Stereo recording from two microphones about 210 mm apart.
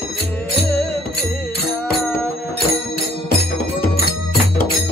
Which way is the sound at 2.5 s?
45° left (ahead or behind).